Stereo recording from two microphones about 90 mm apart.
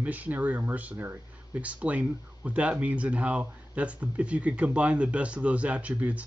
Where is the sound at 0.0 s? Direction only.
20° right (ahead or behind).